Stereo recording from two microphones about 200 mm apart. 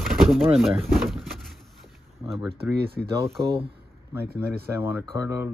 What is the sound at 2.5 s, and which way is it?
Speech, 55° right (ahead or behind).